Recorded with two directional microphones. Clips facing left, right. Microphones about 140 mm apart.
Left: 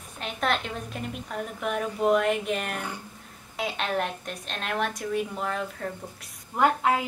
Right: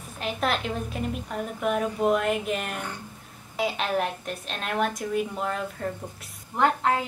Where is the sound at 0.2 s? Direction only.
Centre (ahead or behind).